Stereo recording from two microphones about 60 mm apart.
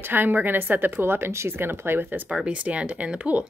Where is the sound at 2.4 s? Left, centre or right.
Right.